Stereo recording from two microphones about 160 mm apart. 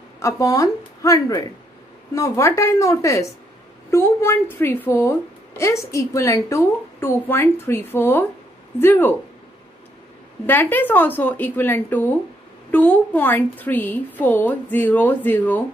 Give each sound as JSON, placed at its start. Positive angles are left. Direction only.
{"t": 0.2, "sound": "a woman's voice", "side_deg": 20}
{"t": 10.4, "sound": "a woman's voice", "side_deg": 10}